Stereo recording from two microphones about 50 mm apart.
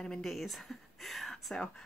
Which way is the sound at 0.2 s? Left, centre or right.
Centre.